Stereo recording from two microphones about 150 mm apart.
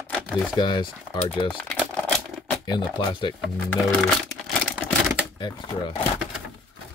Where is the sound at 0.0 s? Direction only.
10° left (ahead or behind).